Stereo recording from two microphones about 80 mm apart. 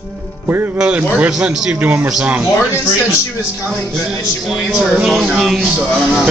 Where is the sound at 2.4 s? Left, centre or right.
Left.